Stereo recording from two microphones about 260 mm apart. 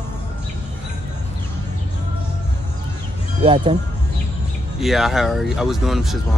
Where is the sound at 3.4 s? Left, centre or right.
Centre.